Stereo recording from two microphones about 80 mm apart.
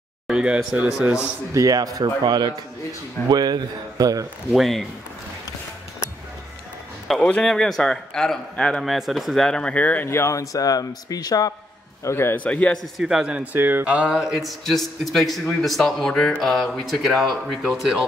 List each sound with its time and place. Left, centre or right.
0.3 s speech: centre
1.5 s speech: right
2.0 s a man's voice: right
4.6 s a man's voice: centre
7.1 s a man's voice: centre
8.8 s a man's voice: centre; by 10.0 s left
10.0 s a man's voice: left
12.0 s a man's voice: left
12.4 s a man's voice: centre
12.9 s speech: centre
13.6 s speech: right
13.8 s a man's voice: centre